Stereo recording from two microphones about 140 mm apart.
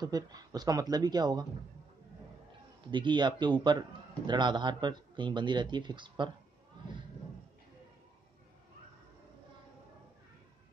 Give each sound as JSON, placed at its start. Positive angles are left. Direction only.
{"t": 0.0, "sound": "speech", "side_deg": -25}
{"t": 2.9, "sound": "a man's voice", "side_deg": -35}